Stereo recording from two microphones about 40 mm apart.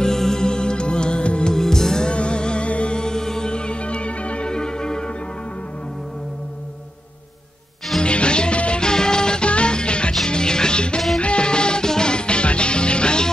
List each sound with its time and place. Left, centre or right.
0.0 s music: centre
1.5 s music: centre
2.0 s music: left
4.5 s music: centre
8.0 s music: left